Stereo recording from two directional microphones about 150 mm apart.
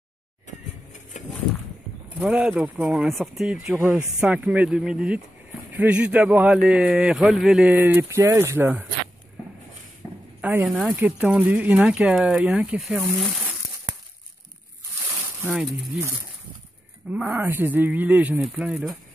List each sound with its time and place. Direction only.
1.1 s a sound: 55° left (ahead or behind)
2.1 s a man's voice: 10° right (ahead or behind)
10.4 s a man's voice: 10° right (ahead or behind)
15.4 s speech: 5° right (ahead or behind)
17.1 s a man's voice: 10° right (ahead or behind)